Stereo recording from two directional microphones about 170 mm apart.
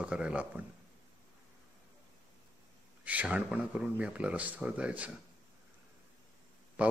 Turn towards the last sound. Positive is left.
turn(degrees=-10)  # may be behind; listen again after turning